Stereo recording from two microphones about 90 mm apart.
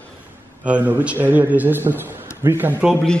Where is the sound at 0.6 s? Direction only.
15° right (ahead or behind).